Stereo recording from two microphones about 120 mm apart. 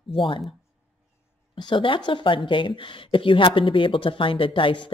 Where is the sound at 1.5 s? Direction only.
45° left (ahead or behind).